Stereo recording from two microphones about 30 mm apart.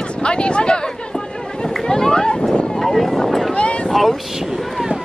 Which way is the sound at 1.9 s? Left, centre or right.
Left.